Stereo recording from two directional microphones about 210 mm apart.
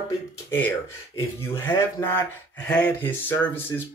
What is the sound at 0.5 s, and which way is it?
Speech, 10° left (ahead or behind).